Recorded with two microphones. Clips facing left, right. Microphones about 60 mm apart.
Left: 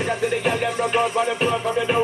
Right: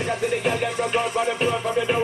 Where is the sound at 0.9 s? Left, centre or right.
Left.